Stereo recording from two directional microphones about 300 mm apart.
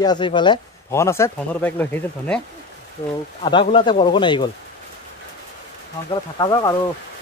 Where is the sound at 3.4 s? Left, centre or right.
Centre.